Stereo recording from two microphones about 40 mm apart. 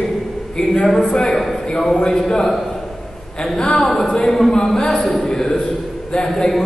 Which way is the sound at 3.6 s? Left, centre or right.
Left.